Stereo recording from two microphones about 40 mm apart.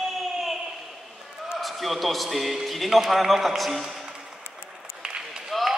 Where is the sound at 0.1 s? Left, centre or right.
Centre.